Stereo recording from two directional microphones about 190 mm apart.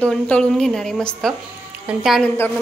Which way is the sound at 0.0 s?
5° left (ahead or behind).